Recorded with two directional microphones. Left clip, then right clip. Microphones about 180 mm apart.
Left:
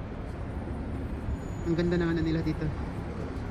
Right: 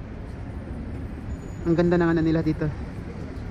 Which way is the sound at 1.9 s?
15° right (ahead or behind).